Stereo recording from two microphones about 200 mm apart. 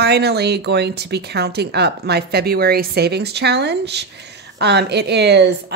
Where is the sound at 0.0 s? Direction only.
55° right (ahead or behind).